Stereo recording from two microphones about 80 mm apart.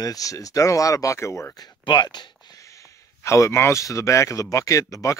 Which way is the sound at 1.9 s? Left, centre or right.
Left.